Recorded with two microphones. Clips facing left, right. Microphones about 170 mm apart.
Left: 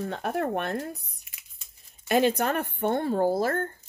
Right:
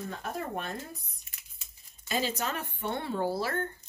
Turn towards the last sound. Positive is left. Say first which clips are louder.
# left 6 dB
turn(degrees=45)  # may be behind; listen again after turning